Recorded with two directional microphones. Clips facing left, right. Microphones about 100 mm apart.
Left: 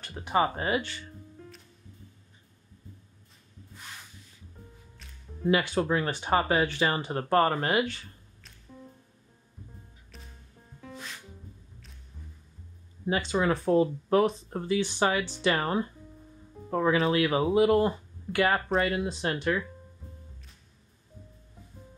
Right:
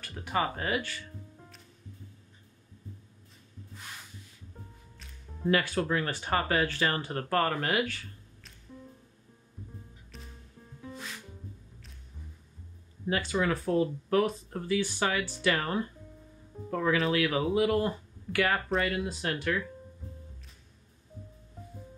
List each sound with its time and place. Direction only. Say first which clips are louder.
0.0 s speech: left 4 dB; 25° left (ahead or behind)
5.5 s speech: left 2 dB; 20° left (ahead or behind)
13.0 s speech: left 2 dB; 20° left (ahead or behind)